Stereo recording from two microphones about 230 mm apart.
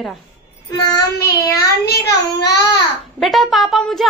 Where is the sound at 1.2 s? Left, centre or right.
Left.